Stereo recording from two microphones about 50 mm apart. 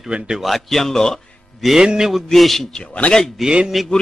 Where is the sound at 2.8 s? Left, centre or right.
Left.